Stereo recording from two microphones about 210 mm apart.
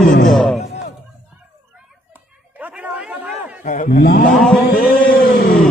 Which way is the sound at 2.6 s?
5° right (ahead or behind).